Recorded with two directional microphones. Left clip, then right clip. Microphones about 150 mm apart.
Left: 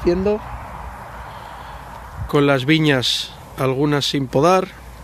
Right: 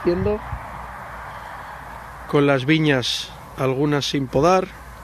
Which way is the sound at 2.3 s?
10° left (ahead or behind).